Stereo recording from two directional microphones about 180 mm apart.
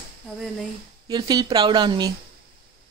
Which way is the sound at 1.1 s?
25° right (ahead or behind).